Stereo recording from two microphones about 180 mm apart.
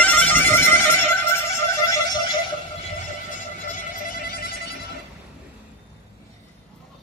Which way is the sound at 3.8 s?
50° left (ahead or behind).